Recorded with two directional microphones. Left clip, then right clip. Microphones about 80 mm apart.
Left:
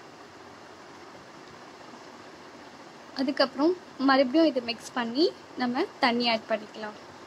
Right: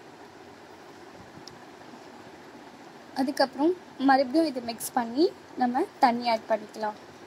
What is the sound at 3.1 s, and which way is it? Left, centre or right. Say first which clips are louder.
A woman's voice: even; centre.